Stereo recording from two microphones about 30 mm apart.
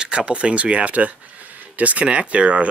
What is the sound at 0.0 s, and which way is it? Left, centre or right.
Speech, right.